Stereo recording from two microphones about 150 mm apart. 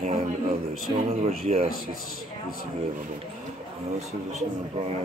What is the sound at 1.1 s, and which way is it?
Speech, 45° right (ahead or behind).